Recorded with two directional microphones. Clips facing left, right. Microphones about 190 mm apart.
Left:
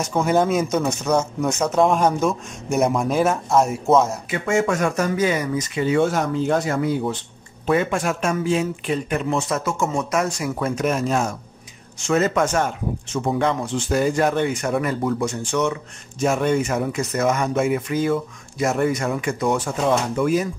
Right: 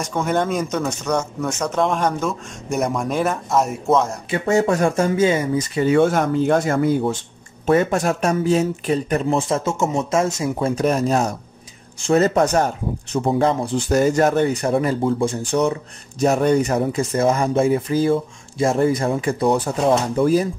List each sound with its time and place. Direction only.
0.0 s speech: 5° left (ahead or behind)
4.3 s speech: 35° right (ahead or behind)
5.8 s speech: 50° right (ahead or behind); by 20.4 s 35° right (ahead or behind)